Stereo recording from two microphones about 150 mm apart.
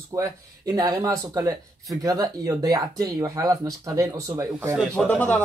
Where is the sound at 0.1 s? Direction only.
25° right (ahead or behind).